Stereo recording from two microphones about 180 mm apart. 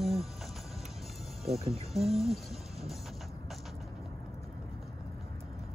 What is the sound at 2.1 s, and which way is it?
Music, centre (ahead or behind).